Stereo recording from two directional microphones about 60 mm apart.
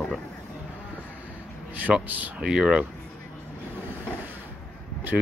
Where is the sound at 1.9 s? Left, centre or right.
Centre.